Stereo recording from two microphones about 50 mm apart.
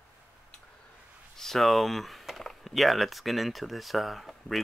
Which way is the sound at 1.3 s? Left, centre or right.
Centre.